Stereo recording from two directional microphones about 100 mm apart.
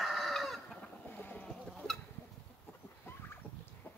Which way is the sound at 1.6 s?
5° left (ahead or behind).